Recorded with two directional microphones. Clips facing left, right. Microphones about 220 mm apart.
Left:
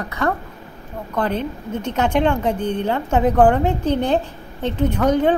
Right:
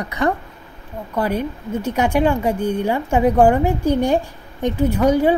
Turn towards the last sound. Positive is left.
turn(degrees=-10)  # may be behind; listen again after turning